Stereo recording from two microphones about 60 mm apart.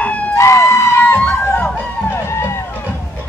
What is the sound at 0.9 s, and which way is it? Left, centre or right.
Crowd, left.